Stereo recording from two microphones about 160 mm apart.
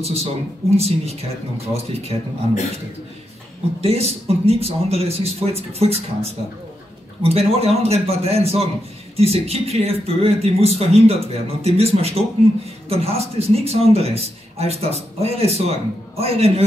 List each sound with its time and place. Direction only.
0.0 s a man's voice: 40° right (ahead or behind)
3.8 s a man's voice: 40° right (ahead or behind)
7.2 s a man's voice: 40° right (ahead or behind)